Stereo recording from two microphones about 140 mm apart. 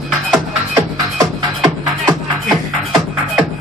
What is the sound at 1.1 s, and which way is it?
Music, 30° right (ahead or behind).